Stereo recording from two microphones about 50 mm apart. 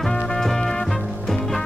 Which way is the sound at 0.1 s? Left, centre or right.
Centre.